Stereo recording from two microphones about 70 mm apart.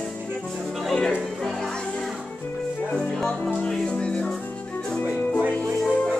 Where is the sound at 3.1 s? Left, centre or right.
Centre.